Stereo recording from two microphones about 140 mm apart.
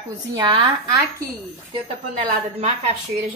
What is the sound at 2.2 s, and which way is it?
Speech, 75° right (ahead or behind).